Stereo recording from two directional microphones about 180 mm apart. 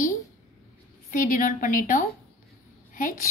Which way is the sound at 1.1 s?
50° left (ahead or behind).